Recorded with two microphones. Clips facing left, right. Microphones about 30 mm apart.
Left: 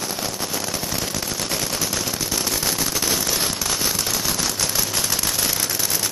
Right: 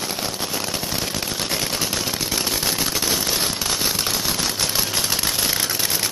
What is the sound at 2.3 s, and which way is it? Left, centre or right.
Machine gun, centre.